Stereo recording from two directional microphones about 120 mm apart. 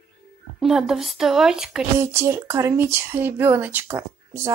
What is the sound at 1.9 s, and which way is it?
A woman's voice, 20° right (ahead or behind).